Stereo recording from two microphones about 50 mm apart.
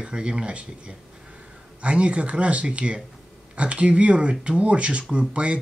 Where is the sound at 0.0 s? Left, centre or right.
Centre.